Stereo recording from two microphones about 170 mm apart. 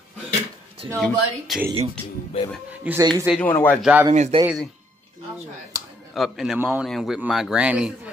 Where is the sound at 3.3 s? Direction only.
10° left (ahead or behind).